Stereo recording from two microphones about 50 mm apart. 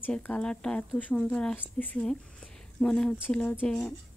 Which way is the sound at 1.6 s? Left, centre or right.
Left.